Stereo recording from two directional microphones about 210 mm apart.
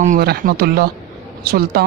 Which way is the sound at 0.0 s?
45° right (ahead or behind).